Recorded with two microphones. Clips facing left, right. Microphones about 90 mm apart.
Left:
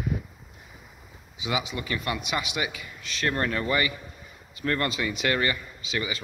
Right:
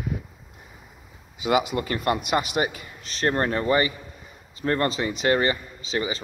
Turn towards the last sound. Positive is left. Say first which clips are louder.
# right 4 dB
turn(degrees=-30)  # may be behind; listen again after turning